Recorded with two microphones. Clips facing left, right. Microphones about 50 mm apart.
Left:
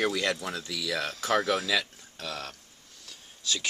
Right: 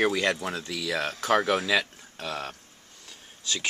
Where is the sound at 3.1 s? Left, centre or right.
Centre.